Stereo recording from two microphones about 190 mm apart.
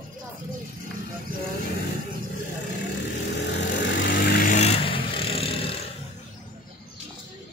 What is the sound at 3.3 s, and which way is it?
Vehicle, 65° left (ahead or behind).